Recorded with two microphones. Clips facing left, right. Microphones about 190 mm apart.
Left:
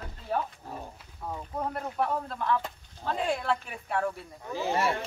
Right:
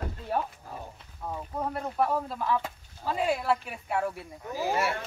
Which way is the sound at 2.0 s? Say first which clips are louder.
Right 2 dB; 5° right (ahead or behind).